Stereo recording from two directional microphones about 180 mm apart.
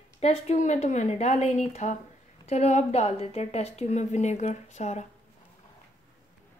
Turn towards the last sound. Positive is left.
turn(degrees=40)  # may be behind; listen again after turning